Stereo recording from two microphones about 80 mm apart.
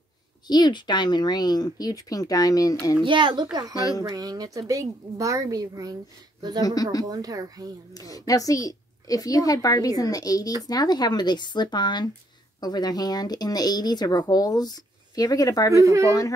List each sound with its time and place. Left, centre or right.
0.5 s a woman's voice: left
3.0 s speech: right
4.1 s a woman's voice: right
6.6 s a woman's voice: left
7.1 s a woman's voice: right
7.9 s a woman's voice: left
12.5 s speech: left
15.7 s speech: right